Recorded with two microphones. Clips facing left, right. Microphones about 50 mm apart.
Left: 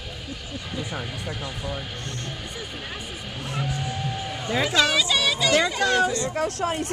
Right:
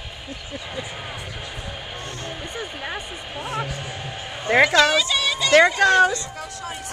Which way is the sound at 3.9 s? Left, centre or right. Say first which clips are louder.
Left 3 dB; centre.